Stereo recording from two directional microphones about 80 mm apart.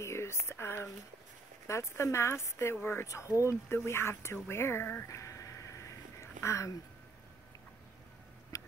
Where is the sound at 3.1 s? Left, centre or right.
Left.